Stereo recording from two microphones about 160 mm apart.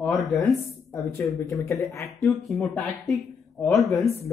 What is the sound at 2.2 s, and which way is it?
Speech, centre (ahead or behind).